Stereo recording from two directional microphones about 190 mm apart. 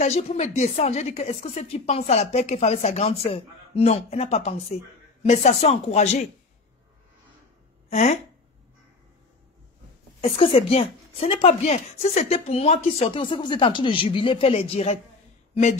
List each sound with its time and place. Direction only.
0.0 s a woman's voice: 35° left (ahead or behind)
7.9 s speech: 35° left (ahead or behind)
10.3 s a woman's voice: 30° left (ahead or behind)